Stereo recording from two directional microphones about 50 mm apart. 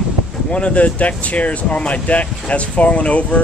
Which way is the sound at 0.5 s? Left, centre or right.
Left.